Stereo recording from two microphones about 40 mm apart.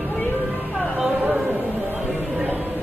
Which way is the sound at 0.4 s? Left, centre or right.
Right.